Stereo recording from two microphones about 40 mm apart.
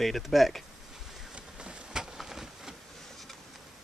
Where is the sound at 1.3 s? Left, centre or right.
Right.